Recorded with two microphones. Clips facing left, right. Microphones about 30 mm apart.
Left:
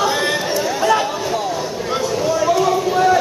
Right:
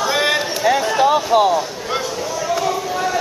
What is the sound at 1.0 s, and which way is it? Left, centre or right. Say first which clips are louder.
Music: right 7 dB; right.